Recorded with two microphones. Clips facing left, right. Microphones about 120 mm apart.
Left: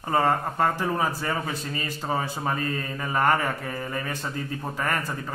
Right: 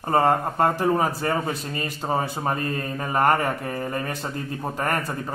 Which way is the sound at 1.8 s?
25° right (ahead or behind).